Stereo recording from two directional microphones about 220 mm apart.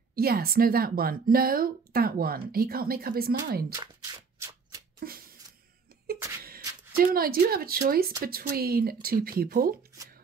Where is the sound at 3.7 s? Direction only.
15° right (ahead or behind).